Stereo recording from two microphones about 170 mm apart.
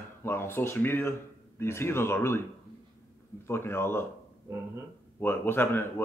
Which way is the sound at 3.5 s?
15° left (ahead or behind).